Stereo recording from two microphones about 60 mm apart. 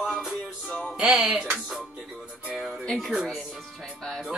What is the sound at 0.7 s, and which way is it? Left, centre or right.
Music, left.